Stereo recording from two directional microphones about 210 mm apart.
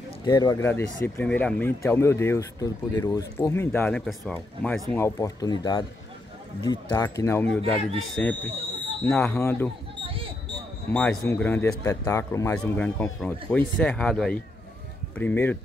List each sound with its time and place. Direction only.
0.2 s speech: 20° left (ahead or behind)
9.0 s speech: 10° left (ahead or behind)
10.9 s speech: 5° left (ahead or behind)